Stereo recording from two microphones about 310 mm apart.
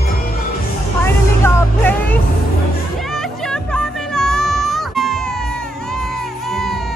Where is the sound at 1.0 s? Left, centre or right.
Centre.